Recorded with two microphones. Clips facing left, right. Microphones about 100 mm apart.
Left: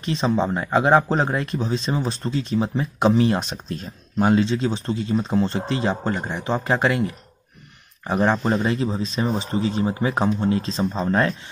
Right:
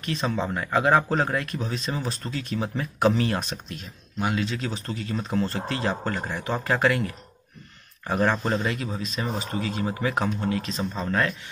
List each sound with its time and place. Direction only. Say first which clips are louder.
0.0 s speech: left 6 dB; 25° left (ahead or behind)